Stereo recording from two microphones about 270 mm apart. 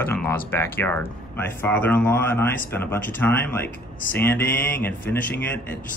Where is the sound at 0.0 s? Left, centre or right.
Centre.